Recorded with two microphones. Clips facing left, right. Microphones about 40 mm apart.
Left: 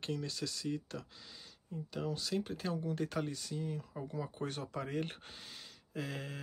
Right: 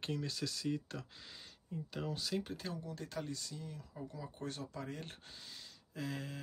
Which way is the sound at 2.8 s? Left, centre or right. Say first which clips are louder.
Left 7 dB; left.